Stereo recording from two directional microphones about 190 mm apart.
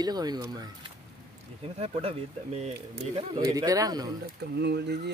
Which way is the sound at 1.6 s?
30° right (ahead or behind).